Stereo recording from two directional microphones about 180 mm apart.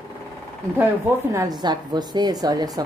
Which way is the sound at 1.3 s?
20° right (ahead or behind).